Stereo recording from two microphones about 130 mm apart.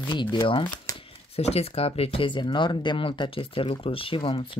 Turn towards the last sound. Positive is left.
turn(degrees=40)  # may be behind; listen again after turning